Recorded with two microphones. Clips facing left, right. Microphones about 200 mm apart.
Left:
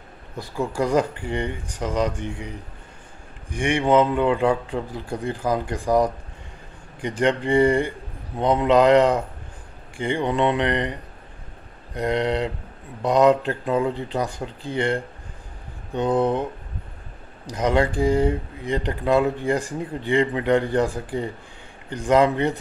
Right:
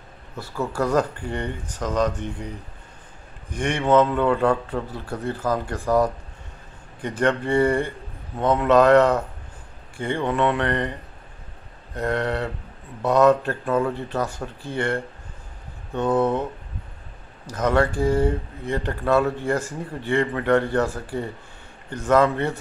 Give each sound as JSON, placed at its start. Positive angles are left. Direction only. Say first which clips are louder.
{"t": 0.4, "sound": "speech", "louder": "left 1 dB", "side_deg": 15}
{"t": 17.5, "sound": "speech", "louder": "even", "side_deg": 15}